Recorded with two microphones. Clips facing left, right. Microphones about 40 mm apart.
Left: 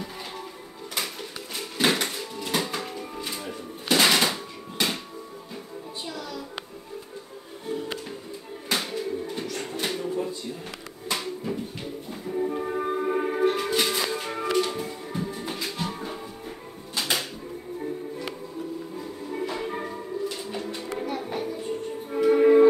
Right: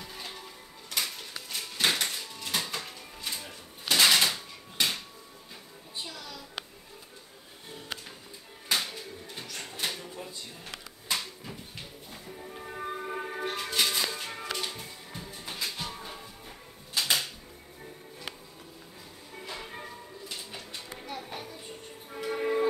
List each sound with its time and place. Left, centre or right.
0.9 s music: centre
6.0 s music: centre
8.6 s music: centre
10.0 s a sound: left
11.1 s a sound: centre
12.3 s music: left
13.6 s music: centre
19.4 s music: centre
20.3 s bird: centre
21.0 s music: left